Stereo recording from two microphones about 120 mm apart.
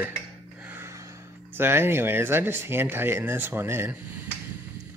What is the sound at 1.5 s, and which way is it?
Speech, 20° right (ahead or behind).